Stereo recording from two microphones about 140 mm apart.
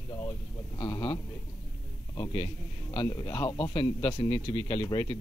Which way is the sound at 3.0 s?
25° left (ahead or behind).